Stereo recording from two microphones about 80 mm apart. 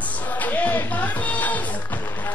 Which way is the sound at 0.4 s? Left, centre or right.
Left.